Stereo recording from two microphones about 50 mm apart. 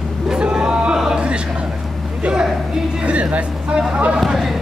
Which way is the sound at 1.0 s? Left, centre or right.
Centre.